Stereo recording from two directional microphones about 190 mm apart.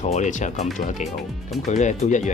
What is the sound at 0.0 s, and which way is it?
Speech, 40° left (ahead or behind).